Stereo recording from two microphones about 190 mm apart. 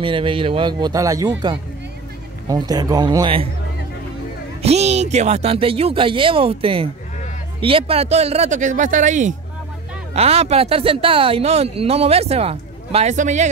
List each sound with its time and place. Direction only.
0.0 s speech: 25° right (ahead or behind)
4.6 s speech: 35° right (ahead or behind)